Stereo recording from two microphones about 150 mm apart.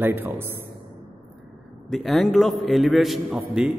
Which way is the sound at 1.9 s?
Centre (ahead or behind).